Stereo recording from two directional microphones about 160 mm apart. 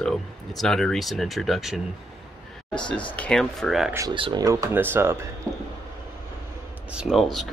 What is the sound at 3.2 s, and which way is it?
Speech, 5° left (ahead or behind).